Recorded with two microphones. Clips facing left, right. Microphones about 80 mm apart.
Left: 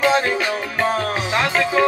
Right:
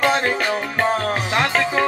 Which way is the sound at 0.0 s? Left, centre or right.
Right.